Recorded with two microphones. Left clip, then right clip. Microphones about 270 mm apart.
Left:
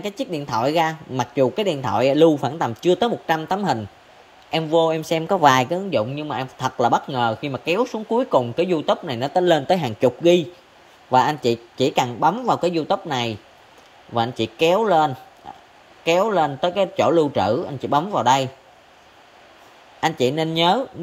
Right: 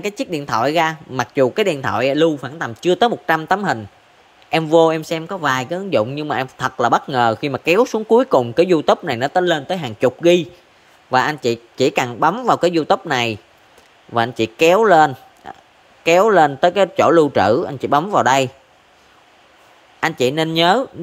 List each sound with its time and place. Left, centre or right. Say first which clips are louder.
0.0 s a man's voice: right 4 dB; centre
5.9 s speech: right 4 dB; centre
20.0 s speech: right 3 dB; centre